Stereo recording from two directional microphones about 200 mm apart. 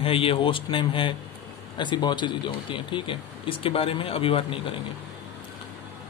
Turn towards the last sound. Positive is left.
turn(degrees=25)  # may be behind; listen again after turning